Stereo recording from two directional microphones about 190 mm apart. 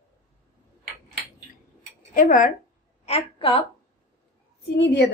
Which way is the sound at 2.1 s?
45° left (ahead or behind).